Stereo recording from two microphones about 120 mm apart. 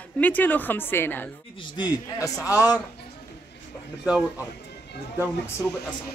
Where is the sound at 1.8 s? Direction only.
30° left (ahead or behind).